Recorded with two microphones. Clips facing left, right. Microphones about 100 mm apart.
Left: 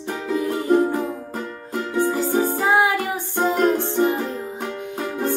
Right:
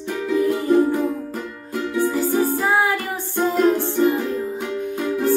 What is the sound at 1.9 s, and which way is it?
Music, 20° left (ahead or behind).